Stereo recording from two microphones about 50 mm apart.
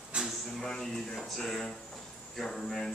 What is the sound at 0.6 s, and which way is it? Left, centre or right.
A man's voice, centre.